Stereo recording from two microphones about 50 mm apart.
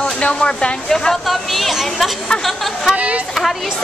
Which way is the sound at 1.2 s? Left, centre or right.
Centre.